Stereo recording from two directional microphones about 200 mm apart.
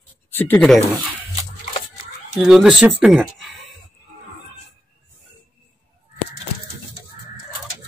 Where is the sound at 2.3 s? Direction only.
5° right (ahead or behind).